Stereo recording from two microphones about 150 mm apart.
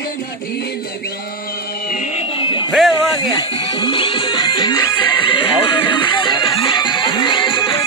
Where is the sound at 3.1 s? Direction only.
25° left (ahead or behind).